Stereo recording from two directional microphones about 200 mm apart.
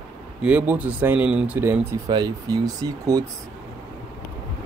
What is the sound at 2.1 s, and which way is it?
Speech, 20° right (ahead or behind).